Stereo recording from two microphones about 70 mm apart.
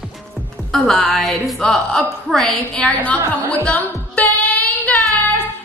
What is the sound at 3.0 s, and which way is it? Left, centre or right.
Speech, left.